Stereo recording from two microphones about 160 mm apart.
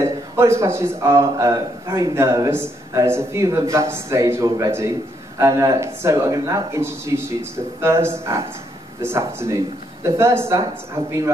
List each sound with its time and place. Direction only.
0.0 s a man's voice: 15° right (ahead or behind)